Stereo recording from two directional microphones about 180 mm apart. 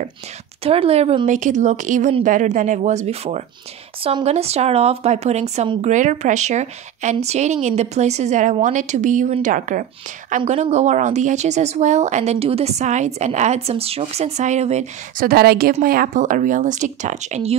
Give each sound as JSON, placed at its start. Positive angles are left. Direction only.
{"t": 0.7, "sound": "speech", "side_deg": -35}
{"t": 15.2, "sound": "a woman's voice", "side_deg": -60}